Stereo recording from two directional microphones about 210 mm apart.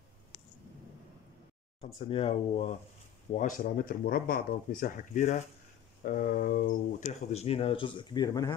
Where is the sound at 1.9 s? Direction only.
30° left (ahead or behind).